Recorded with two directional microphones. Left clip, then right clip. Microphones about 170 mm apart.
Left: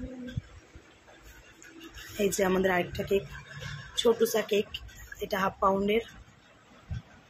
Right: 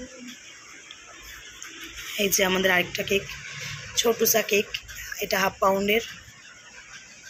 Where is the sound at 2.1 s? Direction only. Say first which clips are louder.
Right 4 dB; 10° left (ahead or behind).